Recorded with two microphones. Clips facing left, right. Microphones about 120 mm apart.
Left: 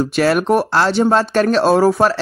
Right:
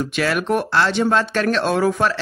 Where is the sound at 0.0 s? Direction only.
40° left (ahead or behind).